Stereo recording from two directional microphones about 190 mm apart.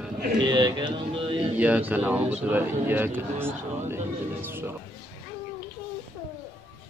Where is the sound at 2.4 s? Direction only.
10° right (ahead or behind).